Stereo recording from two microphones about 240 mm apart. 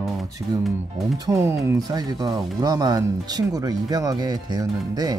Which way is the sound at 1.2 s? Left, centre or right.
Centre.